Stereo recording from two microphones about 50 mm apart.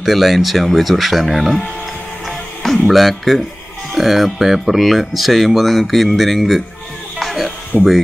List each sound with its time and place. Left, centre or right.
0.0 s speech: centre
2.2 s music: centre
2.9 s speech: centre
7.2 s music: centre
7.7 s speech: left